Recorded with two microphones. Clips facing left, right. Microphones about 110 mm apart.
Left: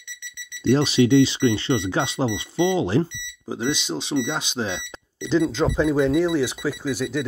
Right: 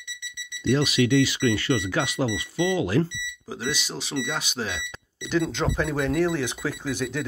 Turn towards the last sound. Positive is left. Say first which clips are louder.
# left 3 dB
turn(degrees=10)  # may be behind; listen again after turning